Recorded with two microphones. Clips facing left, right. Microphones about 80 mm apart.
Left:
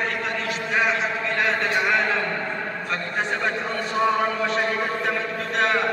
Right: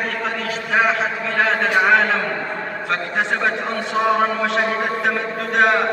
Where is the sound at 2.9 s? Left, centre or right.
Right.